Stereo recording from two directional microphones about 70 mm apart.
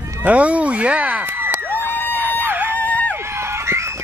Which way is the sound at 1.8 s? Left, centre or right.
Right.